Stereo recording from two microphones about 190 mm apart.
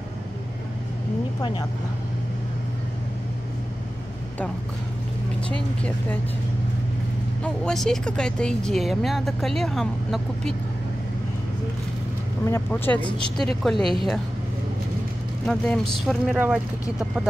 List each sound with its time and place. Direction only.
1.4 s speech: 25° left (ahead or behind)
5.5 s speech: 5° left (ahead or behind)
7.4 s speech: 5° left (ahead or behind)
12.4 s speech: 15° left (ahead or behind)
13.7 s speech: 25° right (ahead or behind)
15.4 s speech: 5° left (ahead or behind)